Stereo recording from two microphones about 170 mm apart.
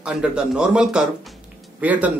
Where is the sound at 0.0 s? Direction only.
5° right (ahead or behind).